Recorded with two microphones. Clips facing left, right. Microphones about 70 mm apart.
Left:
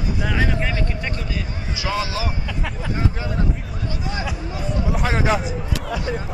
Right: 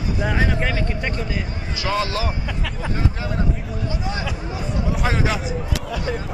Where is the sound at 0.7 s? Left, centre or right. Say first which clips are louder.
Right 2 dB; right.